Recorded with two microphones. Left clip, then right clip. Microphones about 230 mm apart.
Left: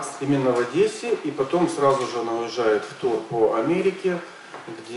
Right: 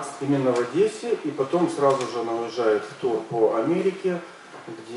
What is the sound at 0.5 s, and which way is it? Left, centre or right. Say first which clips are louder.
Speech: left 1 dB; centre.